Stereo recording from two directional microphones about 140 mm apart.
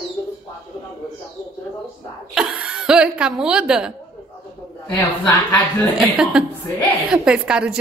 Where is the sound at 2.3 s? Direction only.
5° right (ahead or behind).